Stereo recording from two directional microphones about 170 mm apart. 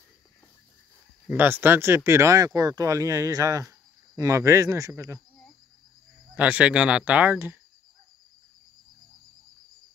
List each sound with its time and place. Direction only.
1.3 s speech: 10° right (ahead or behind)
6.3 s speech: 10° right (ahead or behind)